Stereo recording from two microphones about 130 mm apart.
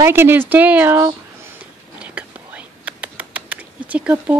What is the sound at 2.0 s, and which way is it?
Whispering, 10° right (ahead or behind).